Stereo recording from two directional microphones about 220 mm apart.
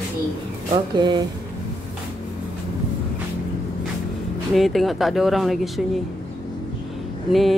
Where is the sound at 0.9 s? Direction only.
20° right (ahead or behind).